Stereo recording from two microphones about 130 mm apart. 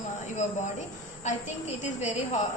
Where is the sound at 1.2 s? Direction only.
65° left (ahead or behind).